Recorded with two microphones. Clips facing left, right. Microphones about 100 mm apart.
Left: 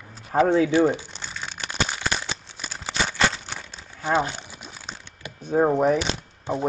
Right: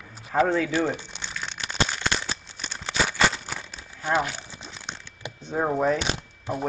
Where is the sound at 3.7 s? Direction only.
25° left (ahead or behind).